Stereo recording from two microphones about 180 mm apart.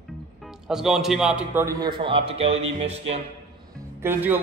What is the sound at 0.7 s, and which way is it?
A man's voice, 5° right (ahead or behind).